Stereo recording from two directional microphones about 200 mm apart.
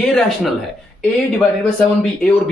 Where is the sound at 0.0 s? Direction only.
5° left (ahead or behind).